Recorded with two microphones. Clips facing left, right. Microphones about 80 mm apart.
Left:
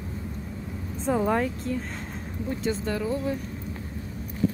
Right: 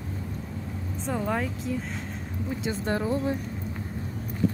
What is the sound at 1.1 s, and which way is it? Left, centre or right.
Speech, centre.